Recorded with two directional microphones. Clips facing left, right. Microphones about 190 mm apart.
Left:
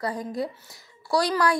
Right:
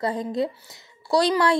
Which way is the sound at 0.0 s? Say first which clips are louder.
Right 4 dB; 25° right (ahead or behind).